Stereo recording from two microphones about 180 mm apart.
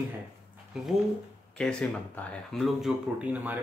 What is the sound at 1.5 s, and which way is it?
Speech, 5° left (ahead or behind).